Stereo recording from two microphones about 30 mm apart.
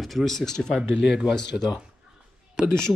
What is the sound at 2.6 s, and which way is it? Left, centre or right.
Speech, right.